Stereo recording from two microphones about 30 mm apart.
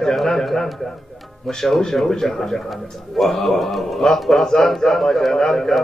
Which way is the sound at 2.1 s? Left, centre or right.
Left.